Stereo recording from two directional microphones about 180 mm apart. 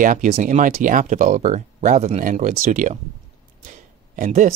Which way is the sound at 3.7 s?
50° right (ahead or behind).